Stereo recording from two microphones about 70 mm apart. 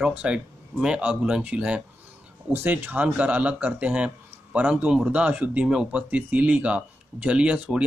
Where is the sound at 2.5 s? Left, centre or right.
Right.